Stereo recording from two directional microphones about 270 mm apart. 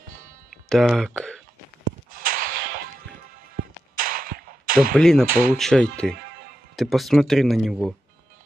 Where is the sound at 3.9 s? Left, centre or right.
Right.